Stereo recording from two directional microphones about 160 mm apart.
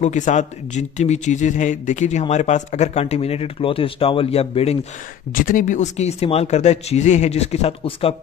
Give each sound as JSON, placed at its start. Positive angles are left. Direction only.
{"t": 0.0, "sound": "speech", "side_deg": 50}
{"t": 5.3, "sound": "speech", "side_deg": 55}